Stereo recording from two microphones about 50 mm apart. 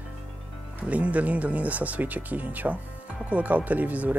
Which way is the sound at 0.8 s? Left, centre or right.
Right.